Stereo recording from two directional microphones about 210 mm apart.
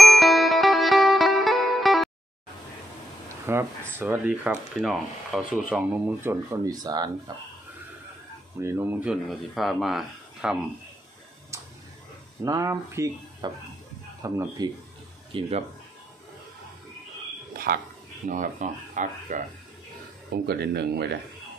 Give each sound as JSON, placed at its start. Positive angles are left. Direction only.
{"t": 0.0, "sound": "music", "side_deg": 0}
{"t": 3.4, "sound": "speech", "side_deg": -10}
{"t": 8.5, "sound": "speech", "side_deg": -10}
{"t": 11.5, "sound": "a sound", "side_deg": -15}
{"t": 12.4, "sound": "speech", "side_deg": -15}
{"t": 15.3, "sound": "speech", "side_deg": -25}
{"t": 17.7, "sound": "speech", "side_deg": -40}
{"t": 20.2, "sound": "speech", "side_deg": -50}